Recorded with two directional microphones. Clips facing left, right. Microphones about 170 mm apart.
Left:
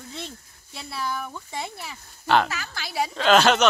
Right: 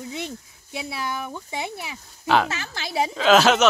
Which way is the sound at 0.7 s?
5° right (ahead or behind).